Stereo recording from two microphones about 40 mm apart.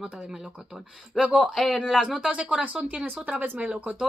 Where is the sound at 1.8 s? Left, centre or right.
Centre.